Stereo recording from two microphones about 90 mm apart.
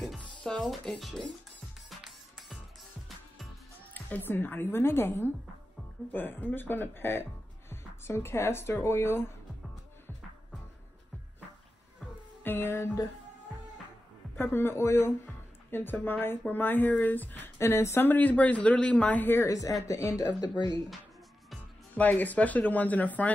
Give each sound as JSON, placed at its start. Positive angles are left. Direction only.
{"t": 0.2, "sound": "speech", "side_deg": 10}
{"t": 1.9, "sound": "music", "side_deg": 0}
{"t": 3.9, "sound": "speech", "side_deg": 20}
{"t": 12.4, "sound": "speech", "side_deg": 25}
{"t": 14.3, "sound": "speech", "side_deg": 25}
{"t": 19.5, "sound": "speech", "side_deg": 40}
{"t": 21.9, "sound": "speech", "side_deg": 20}